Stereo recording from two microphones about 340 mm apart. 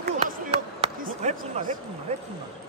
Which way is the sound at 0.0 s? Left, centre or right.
Centre.